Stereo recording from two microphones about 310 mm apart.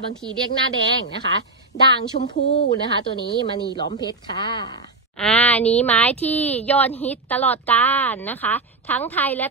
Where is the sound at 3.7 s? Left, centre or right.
Centre.